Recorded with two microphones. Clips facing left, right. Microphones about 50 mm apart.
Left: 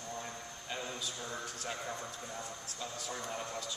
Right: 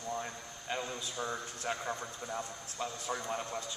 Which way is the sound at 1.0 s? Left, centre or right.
Right.